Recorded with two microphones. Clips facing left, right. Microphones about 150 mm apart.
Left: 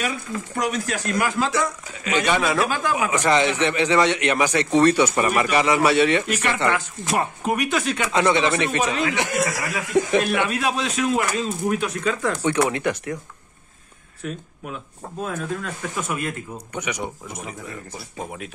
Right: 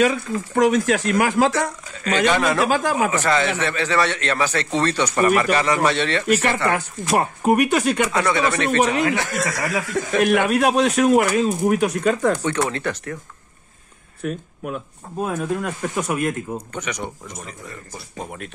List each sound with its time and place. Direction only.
0.6 s speech: 50° right (ahead or behind)
1.5 s a man's voice: 10° left (ahead or behind)
2.7 s speech: 50° right (ahead or behind)
3.1 s a man's voice: 20° left (ahead or behind)
6.3 s speech: 45° right (ahead or behind)
8.1 s speech: 20° left (ahead or behind)
8.6 s speech: 55° right (ahead or behind)
9.1 s speech: 20° left (ahead or behind)
10.2 s speech: 50° right (ahead or behind)
12.6 s a man's voice: 15° left (ahead or behind)
14.2 s speech: 45° right (ahead or behind)
16.7 s a man's voice: 10° left (ahead or behind)